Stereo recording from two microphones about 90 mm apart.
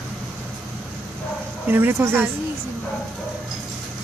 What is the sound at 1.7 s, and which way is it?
Speech, 25° right (ahead or behind).